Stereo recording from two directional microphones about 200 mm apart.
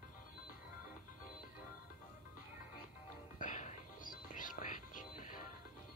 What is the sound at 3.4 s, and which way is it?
Music, 40° left (ahead or behind).